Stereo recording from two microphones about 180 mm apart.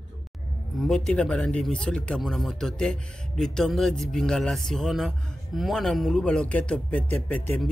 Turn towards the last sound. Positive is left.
turn(degrees=5)  # may be behind; listen again after turning